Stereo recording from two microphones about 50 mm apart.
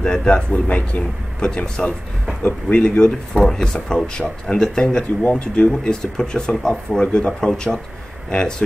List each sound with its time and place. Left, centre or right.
0.0 s speech: centre
1.4 s speech: centre
3.4 s speech: centre
5.2 s speech: left